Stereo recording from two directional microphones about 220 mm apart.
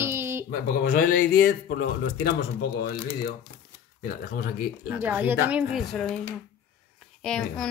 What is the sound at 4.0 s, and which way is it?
Speech, 45° left (ahead or behind).